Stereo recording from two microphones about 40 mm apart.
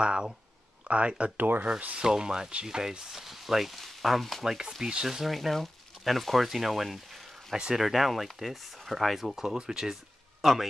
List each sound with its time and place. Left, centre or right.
0.0 s speech: right
1.3 s speech: right
2.0 s speech: centre
4.5 s speech: centre
5.3 s speech: centre
7.5 s speech: right
7.8 s speech: centre
10.4 s speech: centre